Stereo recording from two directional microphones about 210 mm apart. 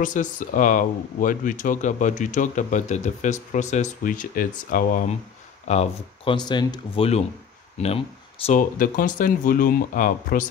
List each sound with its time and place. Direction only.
0.0 s speech: 40° left (ahead or behind)
5.7 s speech: 30° left (ahead or behind)